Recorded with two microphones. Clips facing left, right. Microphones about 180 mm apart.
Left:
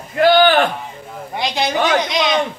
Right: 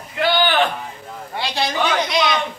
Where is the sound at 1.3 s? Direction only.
20° left (ahead or behind).